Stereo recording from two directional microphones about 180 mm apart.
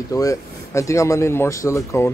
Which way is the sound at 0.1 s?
20° left (ahead or behind).